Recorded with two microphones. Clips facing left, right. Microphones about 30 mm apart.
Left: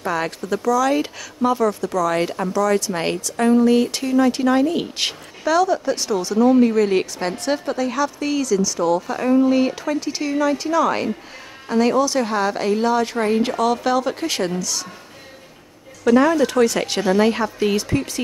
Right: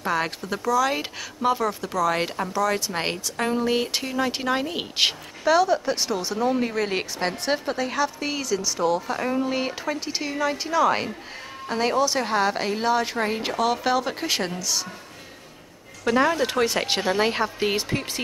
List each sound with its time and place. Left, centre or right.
0.0 s speech: centre
16.1 s speech: centre